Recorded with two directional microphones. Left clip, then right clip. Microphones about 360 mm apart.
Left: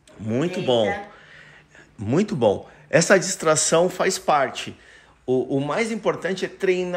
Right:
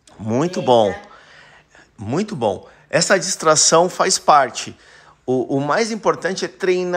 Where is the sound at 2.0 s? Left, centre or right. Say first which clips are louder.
Even; centre.